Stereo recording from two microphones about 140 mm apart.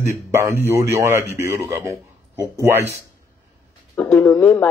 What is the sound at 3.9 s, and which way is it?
Speech, 10° left (ahead or behind).